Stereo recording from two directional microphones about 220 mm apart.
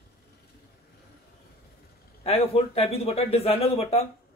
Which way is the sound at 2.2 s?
25° left (ahead or behind).